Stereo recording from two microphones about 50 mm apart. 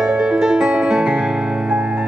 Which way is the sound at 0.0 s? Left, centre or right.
Centre.